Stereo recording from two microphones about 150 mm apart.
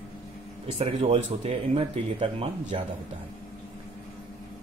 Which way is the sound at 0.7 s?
50° right (ahead or behind).